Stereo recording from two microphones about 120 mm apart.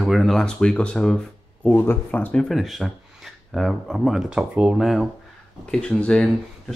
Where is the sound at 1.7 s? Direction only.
20° left (ahead or behind).